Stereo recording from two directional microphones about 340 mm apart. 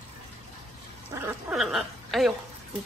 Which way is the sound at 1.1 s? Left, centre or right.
Centre.